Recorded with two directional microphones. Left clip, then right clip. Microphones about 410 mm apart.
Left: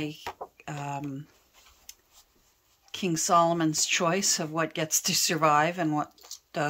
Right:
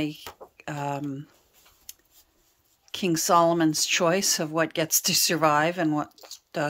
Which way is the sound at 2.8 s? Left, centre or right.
Centre.